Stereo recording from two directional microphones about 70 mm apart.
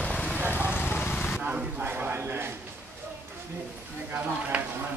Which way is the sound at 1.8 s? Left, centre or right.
Right.